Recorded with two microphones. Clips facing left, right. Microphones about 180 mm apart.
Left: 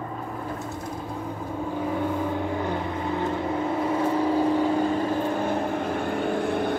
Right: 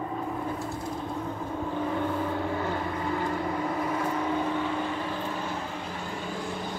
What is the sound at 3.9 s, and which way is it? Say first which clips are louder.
Vehicle: left 6 dB; 30° left (ahead or behind).